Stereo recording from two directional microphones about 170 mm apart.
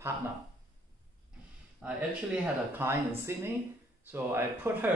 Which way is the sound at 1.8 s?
5° right (ahead or behind).